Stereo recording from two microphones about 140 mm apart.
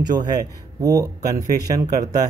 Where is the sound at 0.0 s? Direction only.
30° right (ahead or behind).